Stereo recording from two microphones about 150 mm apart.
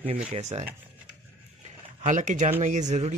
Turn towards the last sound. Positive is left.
turn(degrees=-50)  # may be behind; listen again after turning